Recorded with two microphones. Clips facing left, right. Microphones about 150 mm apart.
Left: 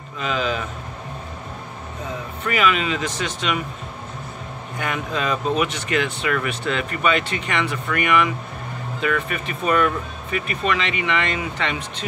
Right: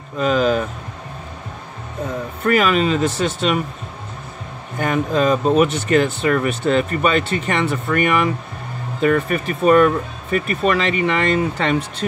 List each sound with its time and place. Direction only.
0.2 s speech: 45° right (ahead or behind)
2.4 s speech: 40° right (ahead or behind)
4.7 s speech: 40° right (ahead or behind)